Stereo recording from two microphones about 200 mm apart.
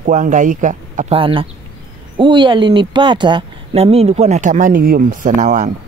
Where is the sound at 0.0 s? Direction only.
40° right (ahead or behind).